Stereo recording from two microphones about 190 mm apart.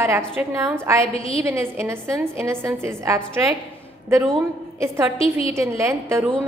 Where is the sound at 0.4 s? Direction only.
15° right (ahead or behind).